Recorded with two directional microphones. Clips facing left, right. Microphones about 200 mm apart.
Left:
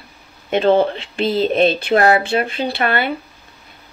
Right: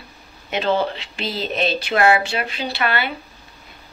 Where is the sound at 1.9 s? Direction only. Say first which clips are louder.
Left 3 dB; 35° left (ahead or behind).